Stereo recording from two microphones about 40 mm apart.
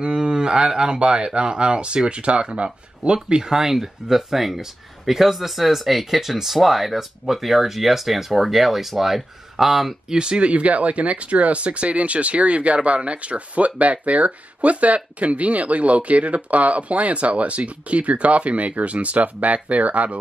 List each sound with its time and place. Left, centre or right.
0.0 s speech: right; by 9.9 s centre
10.0 s speech: centre
10.4 s speech: right